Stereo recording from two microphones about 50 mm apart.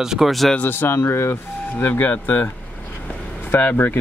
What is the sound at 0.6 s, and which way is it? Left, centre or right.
Speech, left.